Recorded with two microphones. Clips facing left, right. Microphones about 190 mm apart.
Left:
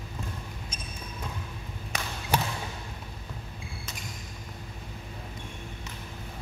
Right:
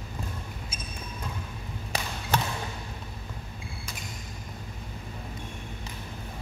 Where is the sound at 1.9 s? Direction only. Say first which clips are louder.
Right 3 dB; 35° right (ahead or behind).